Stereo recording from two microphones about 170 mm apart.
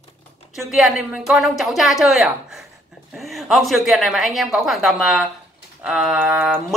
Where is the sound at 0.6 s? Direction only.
Centre (ahead or behind).